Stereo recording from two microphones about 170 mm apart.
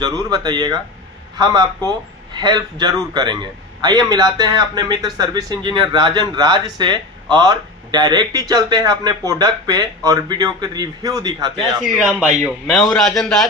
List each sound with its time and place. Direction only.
0.0 s speech: 25° right (ahead or behind)
12.1 s a man's voice: 5° right (ahead or behind)